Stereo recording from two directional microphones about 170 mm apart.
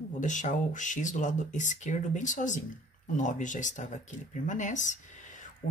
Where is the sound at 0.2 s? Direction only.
45° left (ahead or behind).